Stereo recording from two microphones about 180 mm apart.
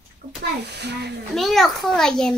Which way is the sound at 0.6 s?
70° right (ahead or behind).